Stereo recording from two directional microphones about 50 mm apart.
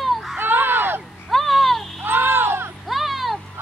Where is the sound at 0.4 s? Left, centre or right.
Right.